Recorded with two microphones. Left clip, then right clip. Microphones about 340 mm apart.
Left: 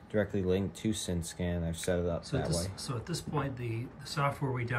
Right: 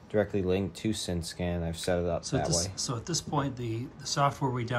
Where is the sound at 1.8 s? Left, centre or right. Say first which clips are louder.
Right 3 dB; centre.